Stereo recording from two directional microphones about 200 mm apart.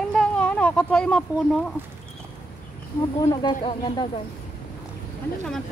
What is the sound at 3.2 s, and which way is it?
Speech, 20° left (ahead or behind).